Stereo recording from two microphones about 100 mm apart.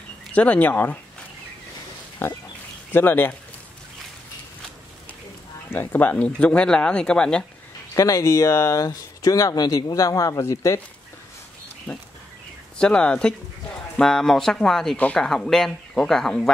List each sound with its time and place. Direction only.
0.3 s speech: 15° left (ahead or behind)
2.2 s speech: 25° left (ahead or behind)
5.7 s speech: 20° left (ahead or behind)
7.9 s speech: 35° left (ahead or behind)
12.7 s speech: 10° left (ahead or behind)